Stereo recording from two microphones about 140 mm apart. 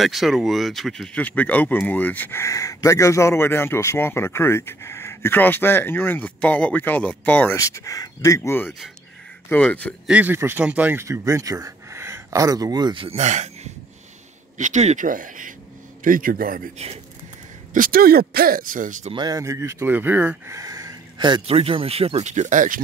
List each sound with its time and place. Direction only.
0.0 s speech: centre (ahead or behind)
7.5 s speech: 20° left (ahead or behind)
10.0 s speech: 10° right (ahead or behind); by 13.5 s 55° right (ahead or behind)
14.6 s speech: 55° right (ahead or behind)
15.0 s a man's voice: 75° right (ahead or behind); by 16.6 s 90° right
16.7 s speech: 50° right (ahead or behind)
17.7 s speech: 85° right; by 19.1 s 65° right (ahead or behind)
19.1 s speech: 25° right (ahead or behind); by 20.5 s 10° right (ahead or behind)
20.5 s a sound: 25° right (ahead or behind)
21.5 s speech: 45° right (ahead or behind); by 22.8 s 70° right (ahead or behind)